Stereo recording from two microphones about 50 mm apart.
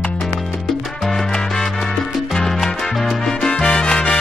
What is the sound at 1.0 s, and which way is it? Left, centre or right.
Salsa music, centre.